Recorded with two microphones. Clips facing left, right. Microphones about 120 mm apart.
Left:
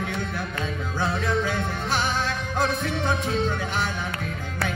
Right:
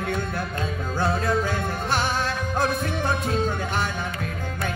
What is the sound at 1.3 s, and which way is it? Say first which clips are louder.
Music: right 1 dB; 45° right (ahead or behind).